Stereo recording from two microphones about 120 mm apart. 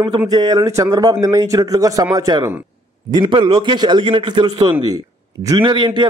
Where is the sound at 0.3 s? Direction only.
35° right (ahead or behind).